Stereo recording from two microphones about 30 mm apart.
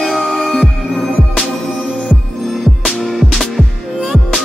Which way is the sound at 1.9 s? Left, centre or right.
Right.